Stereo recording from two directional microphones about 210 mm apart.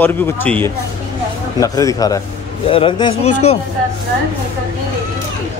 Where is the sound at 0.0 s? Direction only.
10° left (ahead or behind); by 3.2 s 25° left (ahead or behind).